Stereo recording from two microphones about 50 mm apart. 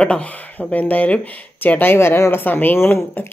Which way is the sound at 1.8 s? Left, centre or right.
Left.